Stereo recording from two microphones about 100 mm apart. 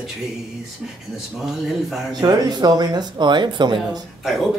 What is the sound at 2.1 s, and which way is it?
Speech, 40° right (ahead or behind).